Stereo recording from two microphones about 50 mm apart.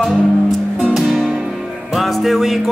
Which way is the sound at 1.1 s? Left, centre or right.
Centre.